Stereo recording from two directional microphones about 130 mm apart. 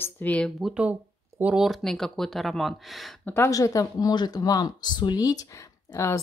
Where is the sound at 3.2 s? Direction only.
20° left (ahead or behind).